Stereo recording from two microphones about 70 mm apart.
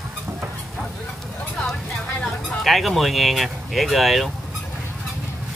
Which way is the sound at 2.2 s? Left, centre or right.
Centre.